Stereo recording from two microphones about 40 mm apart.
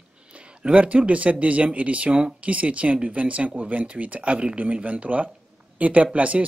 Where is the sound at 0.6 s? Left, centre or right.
Right.